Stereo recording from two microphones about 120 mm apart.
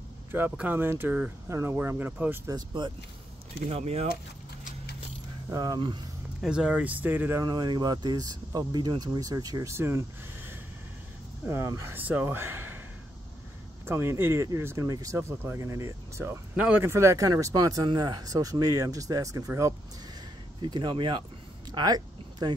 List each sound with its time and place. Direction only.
0.3 s speech: 15° right (ahead or behind)
2.8 s speech: 40° right (ahead or behind)
3.6 s speech: 60° right (ahead or behind)
5.5 s speech: 30° right (ahead or behind)
6.4 s speech: 10° right (ahead or behind)
7.4 s speech: 35° right (ahead or behind)
9.8 s speech: 20° right (ahead or behind)
13.8 s speech: 20° right (ahead or behind)
20.6 s speech: 40° right (ahead or behind)
21.7 s a sound: 35° right (ahead or behind)